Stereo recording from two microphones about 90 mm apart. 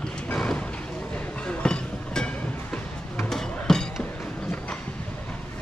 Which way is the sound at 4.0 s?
10° left (ahead or behind).